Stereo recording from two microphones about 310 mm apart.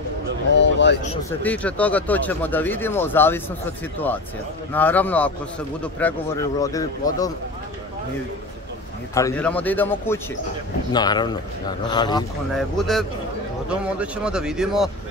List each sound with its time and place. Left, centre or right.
0.6 s a sound: left
1.4 s speech: centre
4.7 s speech: centre
9.1 s speech: centre
12.5 s speech: centre